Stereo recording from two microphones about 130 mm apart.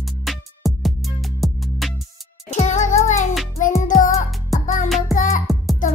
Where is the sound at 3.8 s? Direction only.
90° left.